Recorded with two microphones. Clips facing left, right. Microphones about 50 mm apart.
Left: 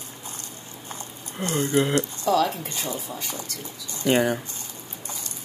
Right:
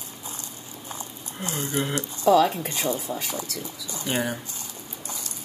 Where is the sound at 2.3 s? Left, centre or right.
Right.